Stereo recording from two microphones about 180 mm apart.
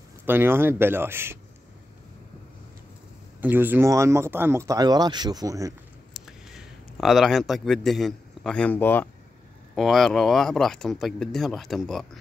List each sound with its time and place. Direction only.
0.2 s speech: 10° right (ahead or behind)
3.3 s speech: 10° right (ahead or behind)
6.2 s speech: centre (ahead or behind)
9.8 s speech: centre (ahead or behind)